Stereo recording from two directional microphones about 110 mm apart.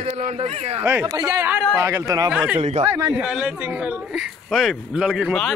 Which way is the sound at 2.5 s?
75° right (ahead or behind).